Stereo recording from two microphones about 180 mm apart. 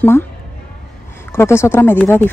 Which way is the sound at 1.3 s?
15° left (ahead or behind).